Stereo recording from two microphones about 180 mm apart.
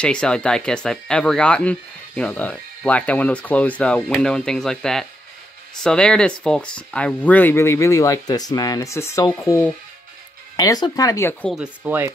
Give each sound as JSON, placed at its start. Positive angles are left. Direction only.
{"t": 0.0, "sound": "speech", "side_deg": 5}
{"t": 11.5, "sound": "speech", "side_deg": -5}